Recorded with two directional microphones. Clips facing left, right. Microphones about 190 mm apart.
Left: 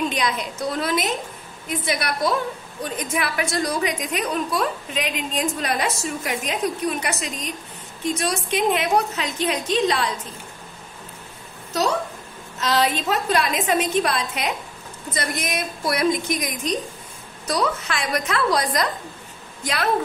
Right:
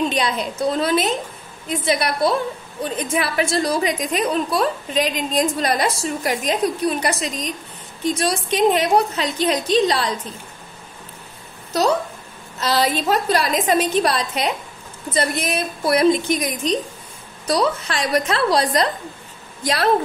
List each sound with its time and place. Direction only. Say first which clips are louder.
0.1 s a woman's voice: right 3 dB; 30° right (ahead or behind)
12.5 s a woman's voice: right 2 dB; 35° right (ahead or behind)